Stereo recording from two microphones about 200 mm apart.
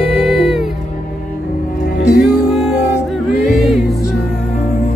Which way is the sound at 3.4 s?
Centre (ahead or behind).